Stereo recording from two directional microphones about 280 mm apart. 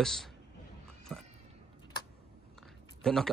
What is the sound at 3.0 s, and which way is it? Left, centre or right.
Speech, centre.